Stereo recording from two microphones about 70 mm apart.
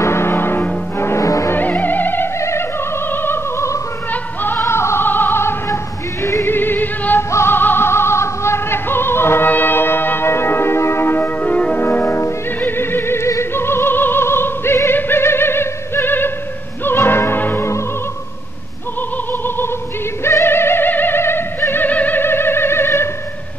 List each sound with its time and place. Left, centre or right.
0.0 s music: left
1.2 s music: left
1.5 s music: left
3.1 s opera: left
6.4 s music: left
7.2 s music: left; by 11.8 s centre
11.8 s music: left
13.3 s opera: left
16.8 s music: left
20.2 s music: left